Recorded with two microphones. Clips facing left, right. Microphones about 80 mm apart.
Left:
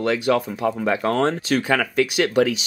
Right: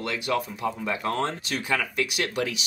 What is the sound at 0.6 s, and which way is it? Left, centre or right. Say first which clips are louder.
Speech: left 7 dB; left.